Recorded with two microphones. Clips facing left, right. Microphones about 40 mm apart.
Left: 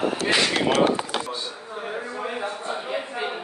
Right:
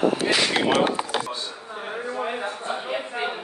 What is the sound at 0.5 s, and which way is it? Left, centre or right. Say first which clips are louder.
Speech: right 1 dB; centre.